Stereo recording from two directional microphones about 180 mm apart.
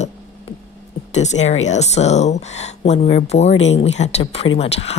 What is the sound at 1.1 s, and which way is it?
Speech, 40° left (ahead or behind).